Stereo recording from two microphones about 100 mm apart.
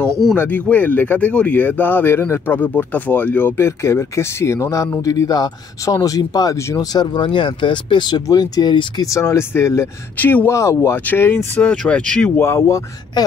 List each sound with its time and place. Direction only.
0.4 s speech: 15° left (ahead or behind); by 9.0 s 45° left (ahead or behind)
9.0 s speech: 30° left (ahead or behind)
10.5 s speech: 30° left (ahead or behind)
11.7 s speech: 10° left (ahead or behind)
12.4 s speech: 30° left (ahead or behind)